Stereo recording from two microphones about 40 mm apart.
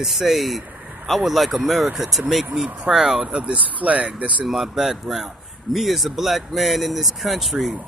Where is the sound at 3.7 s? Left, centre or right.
Right.